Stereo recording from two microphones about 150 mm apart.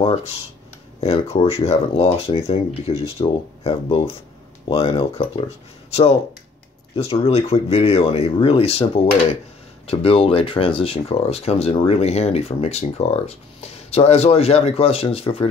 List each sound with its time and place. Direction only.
0.0 s speech: 45° left (ahead or behind)
7.0 s speech: 45° left (ahead or behind)